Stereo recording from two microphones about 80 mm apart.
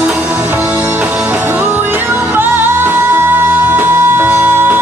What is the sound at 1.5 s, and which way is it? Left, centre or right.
Music, right.